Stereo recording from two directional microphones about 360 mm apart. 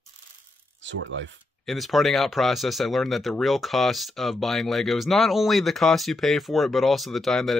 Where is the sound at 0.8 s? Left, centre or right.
Right.